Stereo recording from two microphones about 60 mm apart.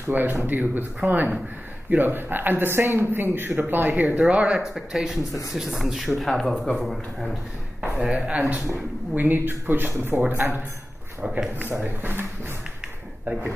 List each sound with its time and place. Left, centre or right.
0.1 s a man's voice: right; by 4.6 s centre
4.7 s speech: centre
8.1 s a man's voice: centre; by 10.2 s right
11.2 s speech: centre
11.8 s a man's voice: right